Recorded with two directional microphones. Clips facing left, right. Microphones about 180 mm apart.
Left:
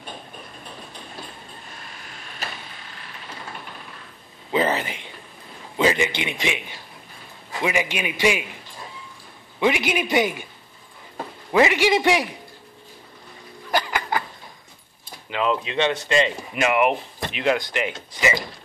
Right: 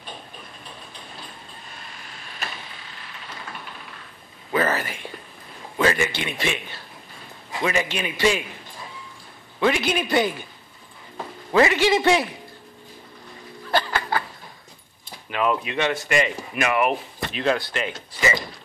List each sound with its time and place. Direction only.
4.5 s a man's voice: 20° left (ahead or behind)
9.6 s a man's voice: 15° left (ahead or behind)
11.5 s a man's voice: 15° left (ahead or behind)
13.7 s a sound: 15° left (ahead or behind)
15.2 s speech: 20° left (ahead or behind)